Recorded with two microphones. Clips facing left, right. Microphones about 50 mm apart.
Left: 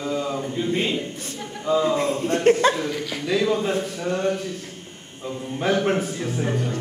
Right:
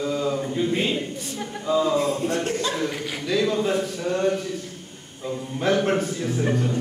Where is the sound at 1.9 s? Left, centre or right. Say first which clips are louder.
Even; left.